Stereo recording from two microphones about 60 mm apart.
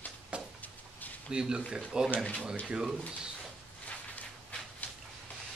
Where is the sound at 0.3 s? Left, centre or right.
Centre.